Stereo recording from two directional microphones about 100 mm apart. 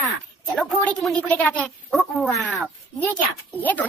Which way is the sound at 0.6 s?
10° left (ahead or behind).